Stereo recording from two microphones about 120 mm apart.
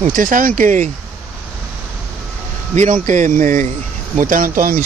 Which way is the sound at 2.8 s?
90° right.